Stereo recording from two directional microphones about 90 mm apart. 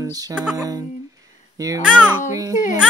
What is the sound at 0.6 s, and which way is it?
Speech, 40° right (ahead or behind).